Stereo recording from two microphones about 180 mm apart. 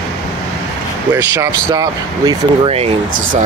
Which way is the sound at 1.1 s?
15° right (ahead or behind).